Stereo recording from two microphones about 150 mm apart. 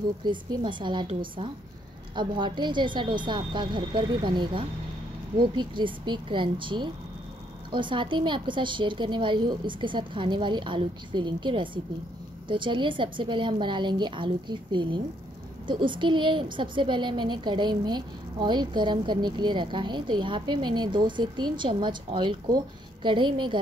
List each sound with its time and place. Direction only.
0.2 s a woman's voice: 30° right (ahead or behind)
2.1 s a woman's voice: 30° right (ahead or behind)